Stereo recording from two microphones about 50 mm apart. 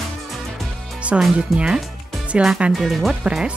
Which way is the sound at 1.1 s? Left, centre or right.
Right.